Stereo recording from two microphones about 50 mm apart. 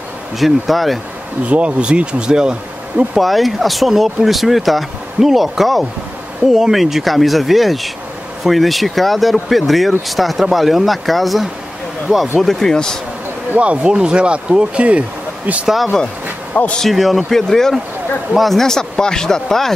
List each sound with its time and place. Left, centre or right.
0.4 s speech: centre
1.5 s speech: right
3.2 s speech: centre
13.6 s speech: right
16.5 s speech: left
16.9 s speech: centre